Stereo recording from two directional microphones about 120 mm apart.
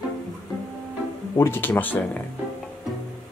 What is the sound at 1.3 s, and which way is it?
Speech, 20° left (ahead or behind).